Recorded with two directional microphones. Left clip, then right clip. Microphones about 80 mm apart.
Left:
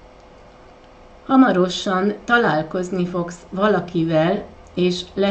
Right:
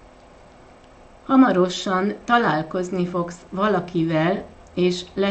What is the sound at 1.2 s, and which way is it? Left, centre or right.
Speech, centre.